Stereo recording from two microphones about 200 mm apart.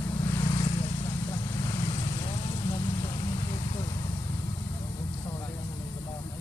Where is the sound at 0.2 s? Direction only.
15° left (ahead or behind).